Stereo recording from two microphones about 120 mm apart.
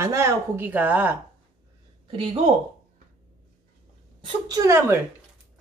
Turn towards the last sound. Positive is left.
turn(degrees=-25)  # may be behind; listen again after turning